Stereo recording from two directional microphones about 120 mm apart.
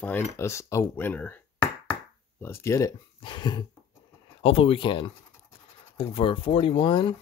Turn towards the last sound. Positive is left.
turn(degrees=45)  # may be behind; listen again after turning